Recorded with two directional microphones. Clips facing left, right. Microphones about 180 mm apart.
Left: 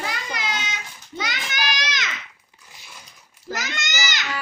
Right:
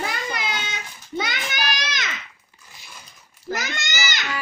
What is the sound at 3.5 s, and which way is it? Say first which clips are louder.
Babbling: right 1 dB; 55° right (ahead or behind).